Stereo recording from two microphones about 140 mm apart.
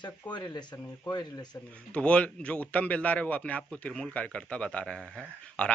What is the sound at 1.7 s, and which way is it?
A man's voice, 10° left (ahead or behind).